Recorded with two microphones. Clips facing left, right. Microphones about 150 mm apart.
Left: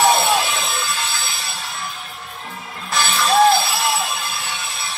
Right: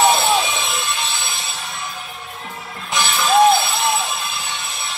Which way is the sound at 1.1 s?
20° right (ahead or behind).